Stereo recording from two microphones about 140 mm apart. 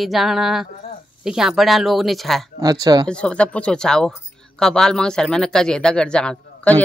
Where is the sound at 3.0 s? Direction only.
5° left (ahead or behind).